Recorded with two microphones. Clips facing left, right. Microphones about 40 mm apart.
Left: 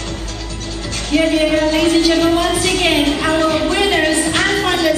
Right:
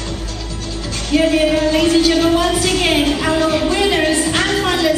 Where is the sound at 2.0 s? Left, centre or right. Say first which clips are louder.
Even; left.